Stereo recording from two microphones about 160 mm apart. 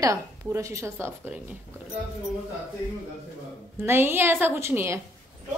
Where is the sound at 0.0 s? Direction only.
20° right (ahead or behind).